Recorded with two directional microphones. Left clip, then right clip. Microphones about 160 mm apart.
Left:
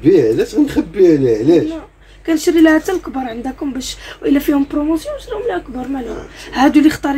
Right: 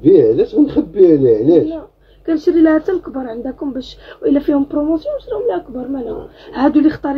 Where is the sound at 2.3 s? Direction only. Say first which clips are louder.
Left 1 dB; 45° left (ahead or behind).